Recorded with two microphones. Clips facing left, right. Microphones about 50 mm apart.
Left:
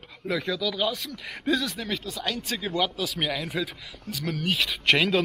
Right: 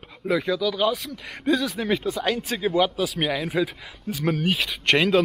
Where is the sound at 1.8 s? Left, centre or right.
Centre.